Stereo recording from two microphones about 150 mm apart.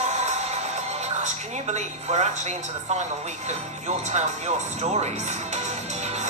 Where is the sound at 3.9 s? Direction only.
45° right (ahead or behind).